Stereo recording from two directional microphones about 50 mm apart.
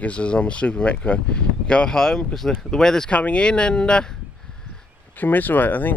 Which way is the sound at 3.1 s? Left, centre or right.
Left.